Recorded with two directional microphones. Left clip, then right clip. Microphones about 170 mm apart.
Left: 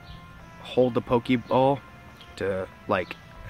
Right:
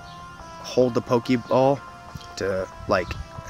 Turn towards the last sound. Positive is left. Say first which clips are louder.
# right 3 dB
turn(degrees=-20)  # may be behind; listen again after turning